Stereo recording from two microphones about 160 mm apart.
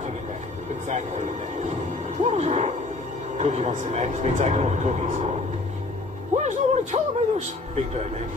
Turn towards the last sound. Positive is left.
turn(degrees=-45)  # may be behind; listen again after turning